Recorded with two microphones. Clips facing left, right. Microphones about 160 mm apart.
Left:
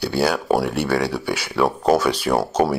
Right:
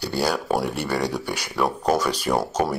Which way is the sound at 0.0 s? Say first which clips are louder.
Left 4 dB; 10° left (ahead or behind).